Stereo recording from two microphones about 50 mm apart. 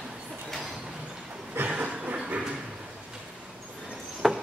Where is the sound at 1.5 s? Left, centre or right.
Right.